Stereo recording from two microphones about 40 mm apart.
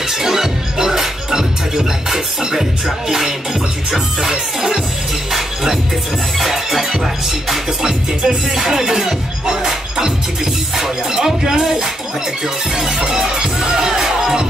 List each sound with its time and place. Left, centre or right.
0.1 s music: centre